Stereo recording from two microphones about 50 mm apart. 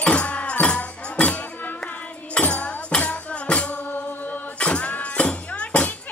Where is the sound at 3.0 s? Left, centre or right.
Left.